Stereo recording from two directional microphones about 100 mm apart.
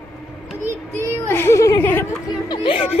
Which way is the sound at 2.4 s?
55° left (ahead or behind).